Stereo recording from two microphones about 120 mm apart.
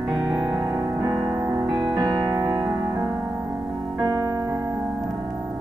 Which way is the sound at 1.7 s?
40° right (ahead or behind).